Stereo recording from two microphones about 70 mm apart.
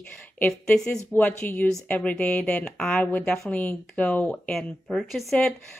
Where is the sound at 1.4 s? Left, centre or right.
Left; by 3.5 s centre.